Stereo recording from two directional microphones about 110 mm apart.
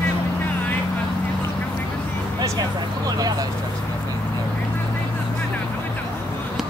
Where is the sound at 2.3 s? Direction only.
35° right (ahead or behind).